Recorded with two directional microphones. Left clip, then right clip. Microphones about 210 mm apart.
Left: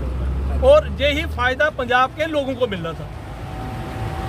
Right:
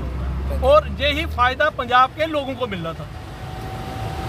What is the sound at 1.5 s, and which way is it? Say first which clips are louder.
Speech: even; centre (ahead or behind).